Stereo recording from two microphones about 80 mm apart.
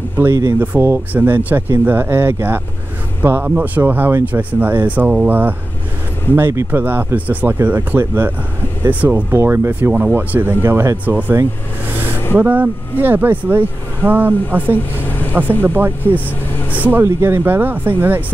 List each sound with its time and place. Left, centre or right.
0.2 s speech: right
6.3 s speech: right
11.1 s speech: right
12.4 s speech: right